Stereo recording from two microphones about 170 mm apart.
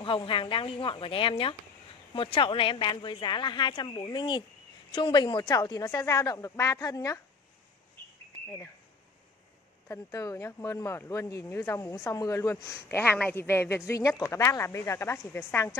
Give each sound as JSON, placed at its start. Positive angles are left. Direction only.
{"t": 0.0, "sound": "a woman's voice", "side_deg": 30}
{"t": 9.8, "sound": "speech", "side_deg": 20}